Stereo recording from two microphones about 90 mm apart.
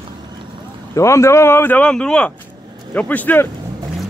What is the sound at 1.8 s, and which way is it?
Speech, 10° left (ahead or behind).